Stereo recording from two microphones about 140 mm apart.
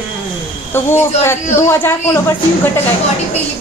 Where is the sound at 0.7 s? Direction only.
15° left (ahead or behind).